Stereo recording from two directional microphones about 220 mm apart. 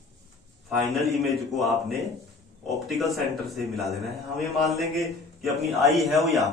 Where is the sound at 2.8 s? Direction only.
Centre (ahead or behind).